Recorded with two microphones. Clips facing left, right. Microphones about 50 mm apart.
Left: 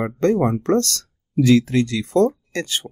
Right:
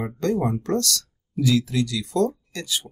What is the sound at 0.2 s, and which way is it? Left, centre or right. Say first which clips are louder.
Speech: left 5 dB; left.